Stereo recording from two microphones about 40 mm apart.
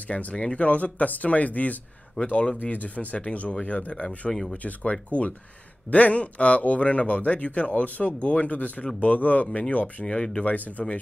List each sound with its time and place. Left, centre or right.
0.1 s speech: left
4.3 s speech: centre
5.1 s speech: left
10.0 s speech: left
10.4 s speech: left